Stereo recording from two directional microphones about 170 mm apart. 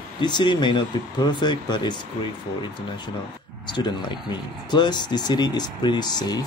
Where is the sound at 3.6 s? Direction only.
25° left (ahead or behind).